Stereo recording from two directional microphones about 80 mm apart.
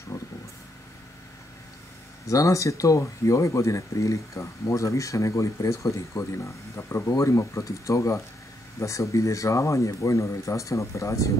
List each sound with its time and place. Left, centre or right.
2.2 s speech: left